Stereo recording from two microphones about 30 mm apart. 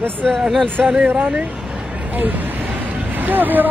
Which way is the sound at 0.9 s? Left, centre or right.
Right.